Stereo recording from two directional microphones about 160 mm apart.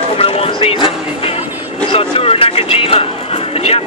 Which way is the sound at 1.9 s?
35° left (ahead or behind).